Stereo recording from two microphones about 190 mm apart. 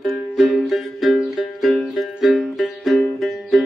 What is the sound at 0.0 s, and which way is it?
Music, centre (ahead or behind).